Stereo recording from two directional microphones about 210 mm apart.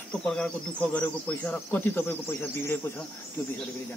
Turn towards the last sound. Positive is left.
turn(degrees=10)  # may be behind; listen again after turning